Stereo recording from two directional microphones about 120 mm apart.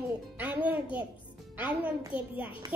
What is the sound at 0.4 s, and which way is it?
A child's voice, 15° right (ahead or behind).